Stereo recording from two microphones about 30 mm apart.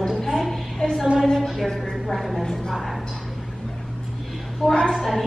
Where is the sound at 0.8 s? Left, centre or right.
Left.